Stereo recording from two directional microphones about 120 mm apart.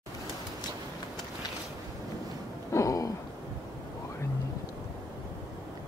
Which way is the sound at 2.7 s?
30° left (ahead or behind).